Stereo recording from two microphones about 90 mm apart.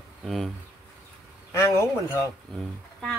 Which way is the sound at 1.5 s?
30° left (ahead or behind).